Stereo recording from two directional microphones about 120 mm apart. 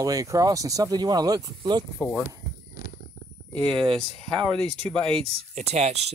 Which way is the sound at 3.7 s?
50° right (ahead or behind).